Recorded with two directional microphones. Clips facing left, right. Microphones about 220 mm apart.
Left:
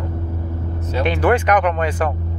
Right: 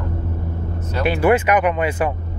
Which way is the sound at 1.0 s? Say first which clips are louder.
Right 1 dB; 5° right (ahead or behind).